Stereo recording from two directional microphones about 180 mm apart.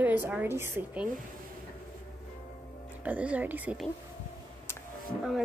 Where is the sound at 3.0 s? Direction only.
10° right (ahead or behind).